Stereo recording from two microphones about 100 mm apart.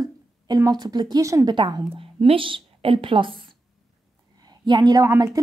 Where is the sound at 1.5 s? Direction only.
55° right (ahead or behind).